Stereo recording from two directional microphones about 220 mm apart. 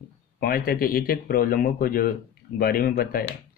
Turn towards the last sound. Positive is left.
turn(degrees=40)  # may be behind; listen again after turning